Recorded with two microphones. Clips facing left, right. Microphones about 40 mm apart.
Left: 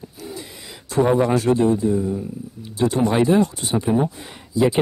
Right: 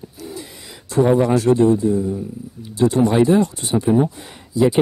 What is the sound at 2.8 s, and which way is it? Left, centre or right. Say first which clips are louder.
Speech: right 3 dB; left.